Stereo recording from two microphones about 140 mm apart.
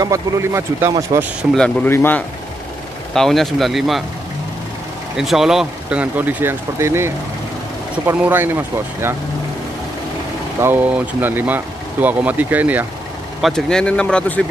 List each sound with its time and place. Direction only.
0.0 s speech: 20° right (ahead or behind)
1.5 s speech: 10° left (ahead or behind)
3.2 s speech: centre (ahead or behind)
5.1 s speech: centre (ahead or behind); by 7.1 s 20° right (ahead or behind)
8.1 s speech: 15° right (ahead or behind)
10.6 s speech: 15° right (ahead or behind)
13.4 s speech: 5° left (ahead or behind)